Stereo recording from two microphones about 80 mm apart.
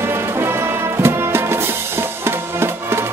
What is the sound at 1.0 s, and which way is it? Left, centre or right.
Music, right.